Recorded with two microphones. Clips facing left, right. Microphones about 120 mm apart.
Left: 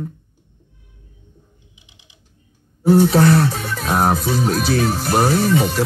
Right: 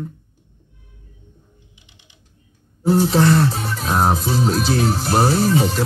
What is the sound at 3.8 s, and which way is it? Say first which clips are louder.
Music: left 1 dB; 5° left (ahead or behind).